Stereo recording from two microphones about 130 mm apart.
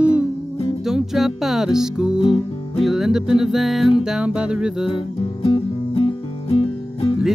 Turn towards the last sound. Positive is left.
turn(degrees=45)  # may be behind; listen again after turning